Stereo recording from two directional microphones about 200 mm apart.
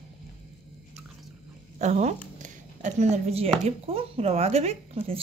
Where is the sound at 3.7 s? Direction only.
30° right (ahead or behind).